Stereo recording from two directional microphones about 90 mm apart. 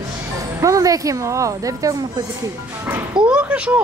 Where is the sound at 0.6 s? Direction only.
40° right (ahead or behind).